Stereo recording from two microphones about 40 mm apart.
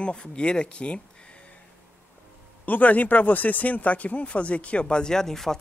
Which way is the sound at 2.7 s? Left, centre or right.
Left.